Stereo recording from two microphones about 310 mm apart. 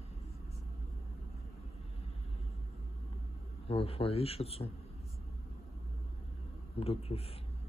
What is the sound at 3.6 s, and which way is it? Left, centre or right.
A man's voice, centre.